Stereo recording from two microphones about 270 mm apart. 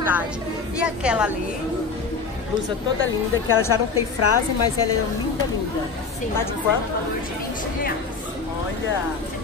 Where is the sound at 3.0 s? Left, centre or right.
Left.